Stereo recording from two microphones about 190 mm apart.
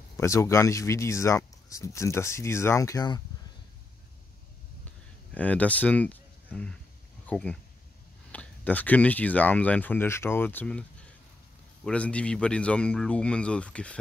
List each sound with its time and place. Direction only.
0.2 s speech: 15° left (ahead or behind)
5.3 s speech: 5° left (ahead or behind)